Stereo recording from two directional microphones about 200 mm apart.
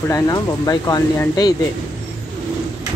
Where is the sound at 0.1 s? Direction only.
15° left (ahead or behind).